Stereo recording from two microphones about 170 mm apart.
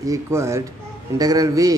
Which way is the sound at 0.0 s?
20° right (ahead or behind).